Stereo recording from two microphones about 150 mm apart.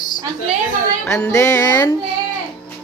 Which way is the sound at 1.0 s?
15° left (ahead or behind).